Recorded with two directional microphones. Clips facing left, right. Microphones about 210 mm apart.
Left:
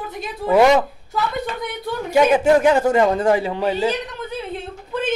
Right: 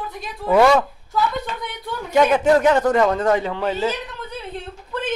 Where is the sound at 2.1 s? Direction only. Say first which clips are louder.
Left 1 dB; 10° left (ahead or behind).